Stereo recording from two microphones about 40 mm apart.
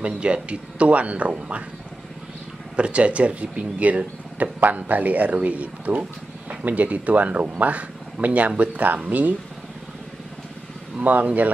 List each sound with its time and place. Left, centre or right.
0.0 s speech: right
2.7 s speech: right
11.0 s speech: right